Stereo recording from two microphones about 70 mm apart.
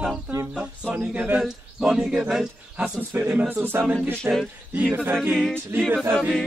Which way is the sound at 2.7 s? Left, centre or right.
Centre.